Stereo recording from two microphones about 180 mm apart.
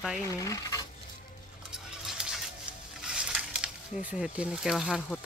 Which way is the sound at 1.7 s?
5° right (ahead or behind).